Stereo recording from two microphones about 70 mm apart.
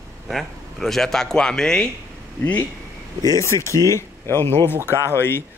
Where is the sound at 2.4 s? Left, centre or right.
Left.